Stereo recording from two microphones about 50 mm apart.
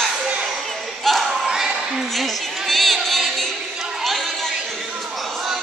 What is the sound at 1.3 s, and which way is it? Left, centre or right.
Basketball bounce, centre.